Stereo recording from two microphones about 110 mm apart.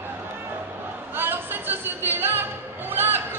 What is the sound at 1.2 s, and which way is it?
Music, 20° right (ahead or behind).